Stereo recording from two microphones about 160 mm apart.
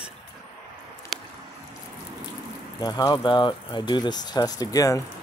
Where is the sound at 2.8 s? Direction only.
25° left (ahead or behind).